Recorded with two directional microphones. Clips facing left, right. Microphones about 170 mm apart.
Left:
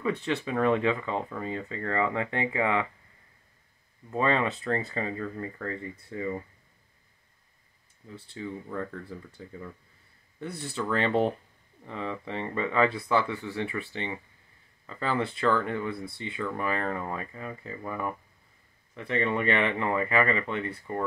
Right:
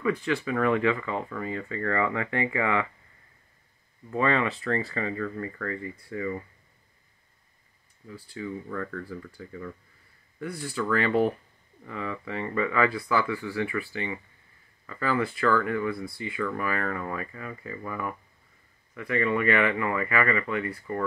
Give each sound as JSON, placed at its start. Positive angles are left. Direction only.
{"t": 0.0, "sound": "speech", "side_deg": 25}
{"t": 4.1, "sound": "speech", "side_deg": 20}
{"t": 8.1, "sound": "speech", "side_deg": 25}